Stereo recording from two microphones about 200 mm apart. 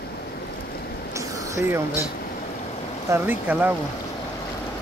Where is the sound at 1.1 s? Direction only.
15° right (ahead or behind).